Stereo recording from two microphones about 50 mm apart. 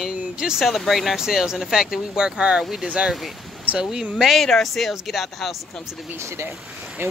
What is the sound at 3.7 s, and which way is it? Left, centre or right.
Speech, centre.